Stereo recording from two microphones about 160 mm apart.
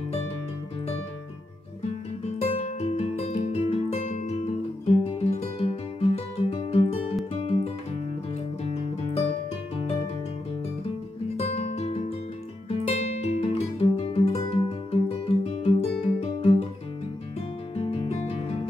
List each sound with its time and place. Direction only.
2.5 s music: 40° left (ahead or behind)
11.3 s guitar: 40° left (ahead or behind)
12.6 s music: 40° left (ahead or behind)
17.7 s music: 35° left (ahead or behind)